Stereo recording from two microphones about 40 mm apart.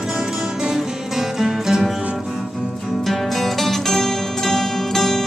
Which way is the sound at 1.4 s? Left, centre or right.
Centre.